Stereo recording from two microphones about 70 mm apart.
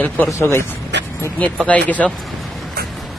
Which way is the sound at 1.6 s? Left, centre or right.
Left.